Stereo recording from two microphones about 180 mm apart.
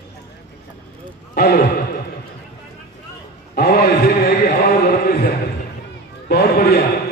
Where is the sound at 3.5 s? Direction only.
60° left (ahead or behind).